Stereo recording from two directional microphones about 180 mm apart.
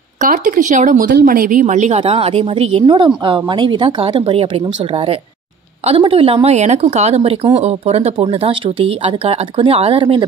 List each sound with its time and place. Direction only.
0.2 s speech: 45° right (ahead or behind); by 10.2 s 30° right (ahead or behind)